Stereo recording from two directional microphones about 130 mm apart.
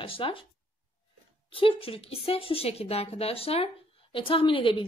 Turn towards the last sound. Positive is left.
turn(degrees=40)  # may be behind; listen again after turning